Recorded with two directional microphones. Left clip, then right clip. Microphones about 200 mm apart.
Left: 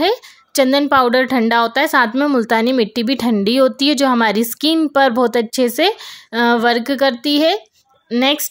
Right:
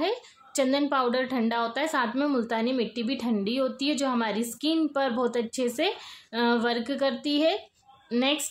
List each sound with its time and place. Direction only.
0.0 s a woman's voice: 40° left (ahead or behind)